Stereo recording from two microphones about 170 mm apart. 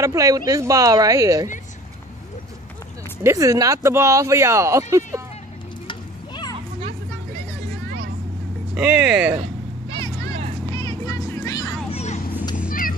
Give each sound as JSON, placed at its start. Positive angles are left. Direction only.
{"t": 0.0, "sound": "speech", "side_deg": -20}
{"t": 3.3, "sound": "speech", "side_deg": -20}
{"t": 5.9, "sound": "stir", "side_deg": 25}
{"t": 8.7, "sound": "speech", "side_deg": -5}
{"t": 9.9, "sound": "a sound", "side_deg": 20}
{"t": 10.7, "sound": "music", "side_deg": 20}
{"t": 11.9, "sound": "children playing", "side_deg": 40}
{"t": 12.5, "sound": "cat", "side_deg": 55}